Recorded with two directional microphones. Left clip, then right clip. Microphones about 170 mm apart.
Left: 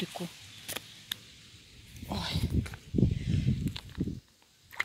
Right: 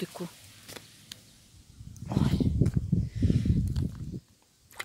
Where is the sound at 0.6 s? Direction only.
45° left (ahead or behind).